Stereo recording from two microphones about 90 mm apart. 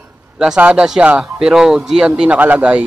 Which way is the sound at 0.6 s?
15° right (ahead or behind).